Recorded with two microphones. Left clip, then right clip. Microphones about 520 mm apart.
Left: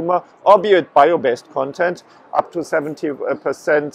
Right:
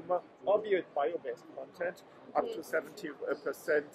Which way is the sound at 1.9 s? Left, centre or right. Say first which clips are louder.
Left 17 dB; left.